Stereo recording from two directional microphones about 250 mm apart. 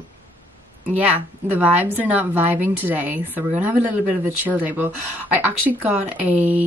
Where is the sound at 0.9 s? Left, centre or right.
Centre.